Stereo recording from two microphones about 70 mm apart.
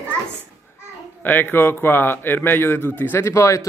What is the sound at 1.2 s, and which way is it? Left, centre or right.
Speech, left.